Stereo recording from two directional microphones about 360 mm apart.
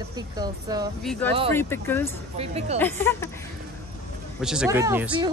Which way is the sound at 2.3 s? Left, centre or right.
Centre.